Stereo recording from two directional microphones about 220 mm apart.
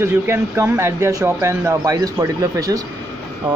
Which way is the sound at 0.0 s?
10° right (ahead or behind).